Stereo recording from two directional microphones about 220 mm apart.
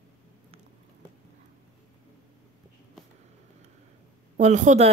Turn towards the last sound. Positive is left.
turn(degrees=-35)  # may be behind; listen again after turning